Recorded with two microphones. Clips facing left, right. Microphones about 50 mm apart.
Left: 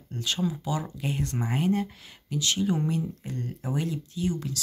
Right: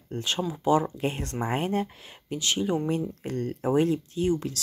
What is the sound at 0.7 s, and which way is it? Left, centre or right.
Speech, right.